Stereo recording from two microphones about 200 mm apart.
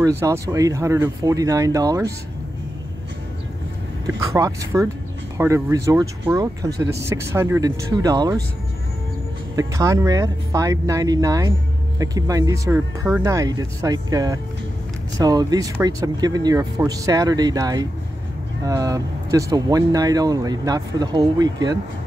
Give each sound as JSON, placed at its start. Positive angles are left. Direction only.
{"t": 0.0, "sound": "speech", "side_deg": -15}
{"t": 4.3, "sound": "speech", "side_deg": -15}
{"t": 9.6, "sound": "speech", "side_deg": -15}